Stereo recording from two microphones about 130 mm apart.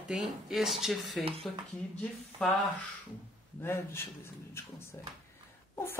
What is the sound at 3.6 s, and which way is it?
Speech, 20° left (ahead or behind).